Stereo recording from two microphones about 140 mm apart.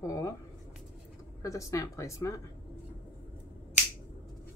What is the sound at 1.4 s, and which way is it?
Speech, 25° left (ahead or behind).